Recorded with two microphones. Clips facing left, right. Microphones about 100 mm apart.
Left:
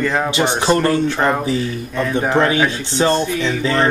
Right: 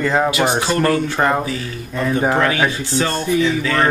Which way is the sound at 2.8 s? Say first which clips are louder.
Left 4 dB; 25° left (ahead or behind).